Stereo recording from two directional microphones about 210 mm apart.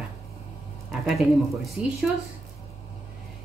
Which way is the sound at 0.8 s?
Centre (ahead or behind).